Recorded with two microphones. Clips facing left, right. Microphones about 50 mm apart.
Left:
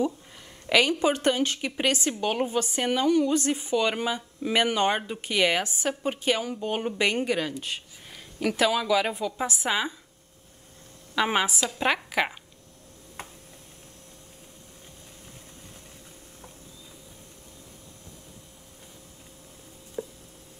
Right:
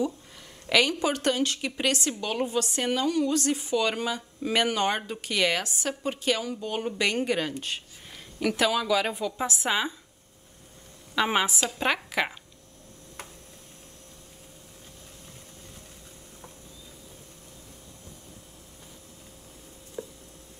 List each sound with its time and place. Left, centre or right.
0.7 s a woman's voice: centre
7.2 s speech: centre
11.1 s speech: centre
20.0 s a sound: centre